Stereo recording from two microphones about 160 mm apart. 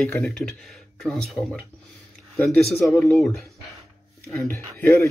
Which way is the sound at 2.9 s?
5° left (ahead or behind).